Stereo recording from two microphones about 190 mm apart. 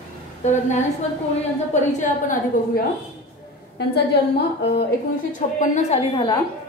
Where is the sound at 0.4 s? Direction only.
40° left (ahead or behind).